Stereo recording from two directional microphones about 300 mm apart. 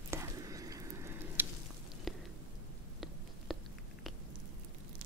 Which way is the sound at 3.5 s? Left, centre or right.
Centre.